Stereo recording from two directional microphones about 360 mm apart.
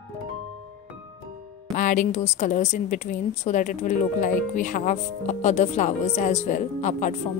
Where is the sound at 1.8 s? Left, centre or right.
Left.